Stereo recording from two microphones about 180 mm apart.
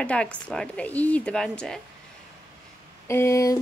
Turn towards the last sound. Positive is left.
turn(degrees=15)  # may be behind; listen again after turning